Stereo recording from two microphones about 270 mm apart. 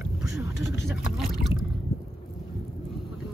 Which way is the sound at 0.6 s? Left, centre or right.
Left.